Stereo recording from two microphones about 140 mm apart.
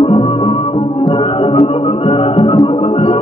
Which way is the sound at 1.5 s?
40° left (ahead or behind).